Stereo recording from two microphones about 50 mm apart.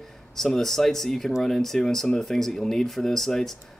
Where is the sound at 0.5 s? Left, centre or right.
Centre.